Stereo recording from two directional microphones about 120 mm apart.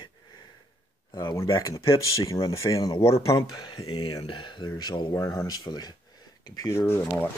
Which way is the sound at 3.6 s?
40° left (ahead or behind).